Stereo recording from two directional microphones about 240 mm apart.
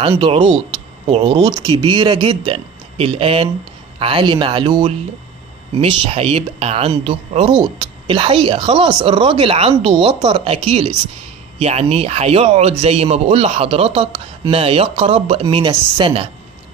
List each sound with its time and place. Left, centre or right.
0.0 s a man's voice: right